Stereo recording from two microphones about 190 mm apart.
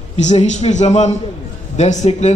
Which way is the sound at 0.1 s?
35° left (ahead or behind).